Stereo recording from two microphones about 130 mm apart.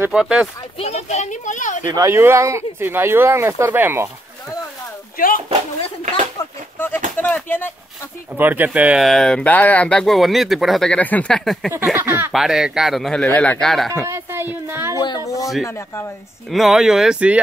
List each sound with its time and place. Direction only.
0.1 s speech: 5° right (ahead or behind)
0.7 s speech: 55° left (ahead or behind); by 1.9 s 75° left (ahead or behind)
1.9 s speech: 30° right (ahead or behind)
5.1 s speech: 90° left
7.2 s speech: 15° left (ahead or behind)
8.4 s speech: 15° right (ahead or behind)
9.0 s speech: 5° left (ahead or behind)
11.9 s speech: 20° right (ahead or behind)
12.3 s speech: 5° right (ahead or behind)
14.0 s a woman's voice: 20° right (ahead or behind)
15.0 s speech: 35° left (ahead or behind)
16.4 s speech: centre (ahead or behind)